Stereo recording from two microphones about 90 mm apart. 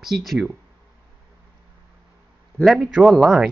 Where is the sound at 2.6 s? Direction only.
Centre (ahead or behind).